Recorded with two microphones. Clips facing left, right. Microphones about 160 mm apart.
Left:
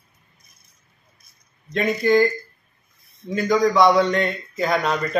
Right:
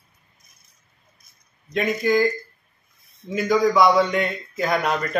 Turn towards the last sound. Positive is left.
turn(degrees=0)  # may be behind; listen again after turning